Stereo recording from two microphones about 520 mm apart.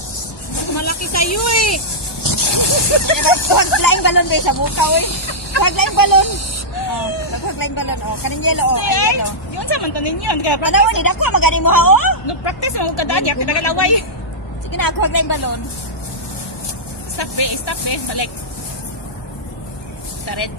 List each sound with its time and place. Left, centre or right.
0.7 s vehicle: left
2.2 s speech: left
7.5 s speech: left
17.2 s speech: left